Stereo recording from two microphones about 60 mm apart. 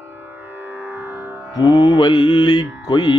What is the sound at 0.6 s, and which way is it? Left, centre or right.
Music, right.